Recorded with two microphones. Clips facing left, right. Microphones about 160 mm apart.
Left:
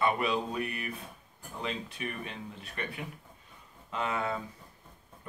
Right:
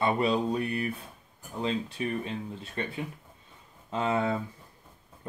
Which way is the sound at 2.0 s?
30° right (ahead or behind).